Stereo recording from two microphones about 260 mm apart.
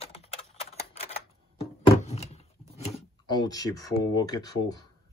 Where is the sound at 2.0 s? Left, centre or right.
Left.